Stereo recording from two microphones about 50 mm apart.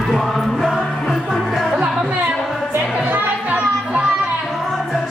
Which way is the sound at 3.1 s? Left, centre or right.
Right.